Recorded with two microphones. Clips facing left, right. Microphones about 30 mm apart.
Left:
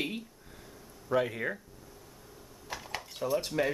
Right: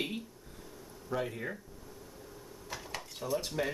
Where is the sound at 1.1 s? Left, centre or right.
Left.